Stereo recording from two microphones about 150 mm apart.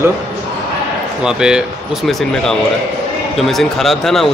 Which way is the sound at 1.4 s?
5° right (ahead or behind).